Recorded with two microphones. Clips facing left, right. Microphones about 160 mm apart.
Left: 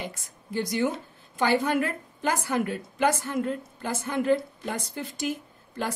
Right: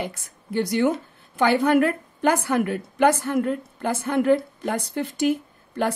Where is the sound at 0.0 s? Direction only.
60° right (ahead or behind).